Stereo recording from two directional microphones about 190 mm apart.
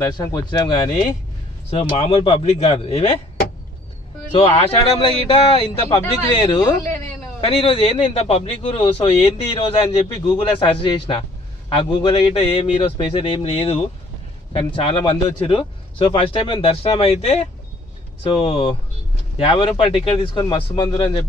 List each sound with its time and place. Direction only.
0.0 s a man's voice: 20° left (ahead or behind)
4.3 s a man's voice: 30° left (ahead or behind)
6.6 s speech: 15° left (ahead or behind)
7.3 s a man's voice: 25° left (ahead or behind)